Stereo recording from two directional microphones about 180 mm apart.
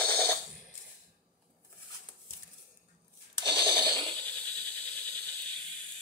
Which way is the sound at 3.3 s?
15° left (ahead or behind).